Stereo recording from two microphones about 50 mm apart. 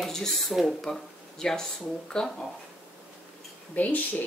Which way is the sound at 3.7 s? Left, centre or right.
Left.